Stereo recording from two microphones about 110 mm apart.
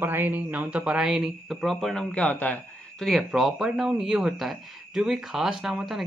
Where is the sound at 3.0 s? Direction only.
Centre (ahead or behind).